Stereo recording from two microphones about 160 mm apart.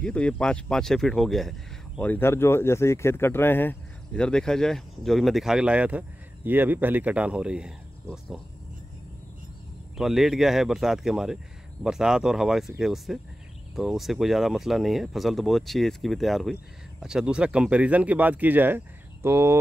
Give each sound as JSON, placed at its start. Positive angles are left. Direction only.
{"t": 0.0, "sound": "speech", "side_deg": 5}
{"t": 9.9, "sound": "speech", "side_deg": 0}